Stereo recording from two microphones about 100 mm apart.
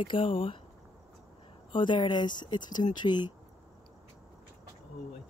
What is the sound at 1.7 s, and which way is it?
Speech, 50° left (ahead or behind).